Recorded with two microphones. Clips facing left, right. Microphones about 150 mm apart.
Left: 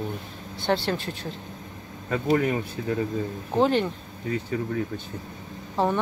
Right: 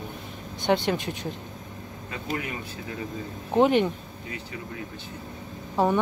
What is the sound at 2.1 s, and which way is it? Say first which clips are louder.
Speech: left 10 dB; 45° left (ahead or behind).